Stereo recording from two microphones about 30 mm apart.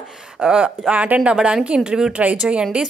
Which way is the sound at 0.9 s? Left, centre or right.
Right.